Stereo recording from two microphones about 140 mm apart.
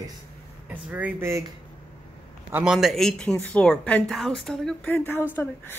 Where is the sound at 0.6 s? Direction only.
10° right (ahead or behind).